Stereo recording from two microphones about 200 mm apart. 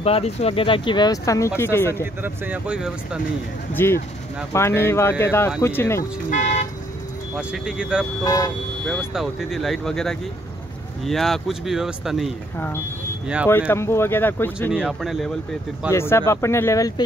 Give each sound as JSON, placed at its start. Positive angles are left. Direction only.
{"t": 0.0, "sound": "speech", "side_deg": 30}
{"t": 2.2, "sound": "speech", "side_deg": -10}
{"t": 3.7, "sound": "speech", "side_deg": 10}
{"t": 6.3, "sound": "toot", "side_deg": 35}
{"t": 7.3, "sound": "speech", "side_deg": -5}
{"t": 8.2, "sound": "speech", "side_deg": 20}
{"t": 8.8, "sound": "speech", "side_deg": 0}
{"t": 12.5, "sound": "speech", "side_deg": 10}
{"t": 14.7, "sound": "speech", "side_deg": -5}
{"t": 15.9, "sound": "speech", "side_deg": 10}